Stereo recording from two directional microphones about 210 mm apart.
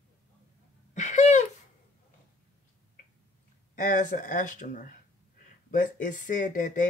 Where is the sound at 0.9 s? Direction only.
35° left (ahead or behind).